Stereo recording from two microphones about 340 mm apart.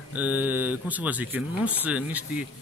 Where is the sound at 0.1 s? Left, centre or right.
Centre.